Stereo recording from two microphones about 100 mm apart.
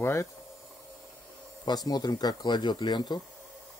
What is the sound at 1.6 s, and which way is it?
Speech, 40° left (ahead or behind).